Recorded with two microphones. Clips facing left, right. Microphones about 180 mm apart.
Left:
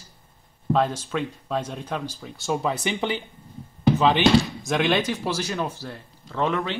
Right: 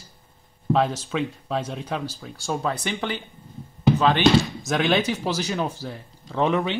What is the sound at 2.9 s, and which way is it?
Speech, 15° left (ahead or behind).